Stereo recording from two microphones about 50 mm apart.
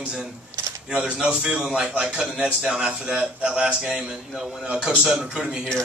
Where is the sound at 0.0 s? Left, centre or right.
Centre.